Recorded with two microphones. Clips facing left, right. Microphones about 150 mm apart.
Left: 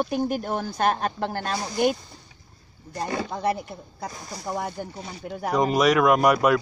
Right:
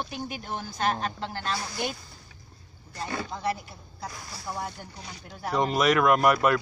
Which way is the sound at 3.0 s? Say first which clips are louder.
Left 5 dB; 40° left (ahead or behind).